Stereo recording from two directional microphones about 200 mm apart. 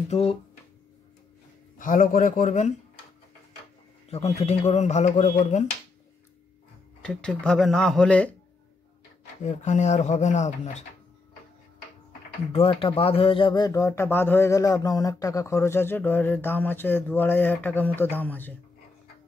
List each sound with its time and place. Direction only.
0.1 s speech: 30° left (ahead or behind)
1.8 s speech: 40° left (ahead or behind)
4.1 s speech: 30° left (ahead or behind)
7.0 s speech: 5° left (ahead or behind)
9.4 s speech: 35° left (ahead or behind)
12.5 s speech: 25° left (ahead or behind); by 18.6 s 10° left (ahead or behind)